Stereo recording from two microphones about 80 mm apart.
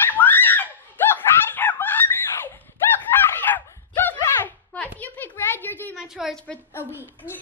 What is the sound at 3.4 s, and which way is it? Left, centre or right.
Dog, left.